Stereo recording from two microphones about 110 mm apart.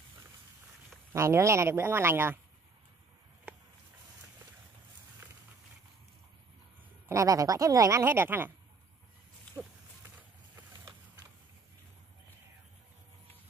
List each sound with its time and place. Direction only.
1.1 s speech: 25° right (ahead or behind)
7.1 s speech: 30° right (ahead or behind)
9.6 s pig: 15° right (ahead or behind)